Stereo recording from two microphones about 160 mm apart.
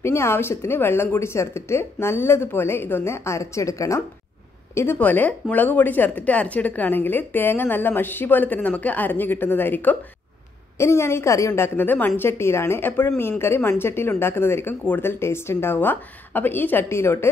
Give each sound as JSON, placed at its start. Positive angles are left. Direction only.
{"t": 0.0, "sound": "speech", "side_deg": 15}